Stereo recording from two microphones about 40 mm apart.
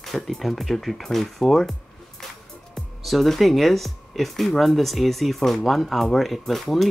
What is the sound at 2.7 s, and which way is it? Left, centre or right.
Speech, centre.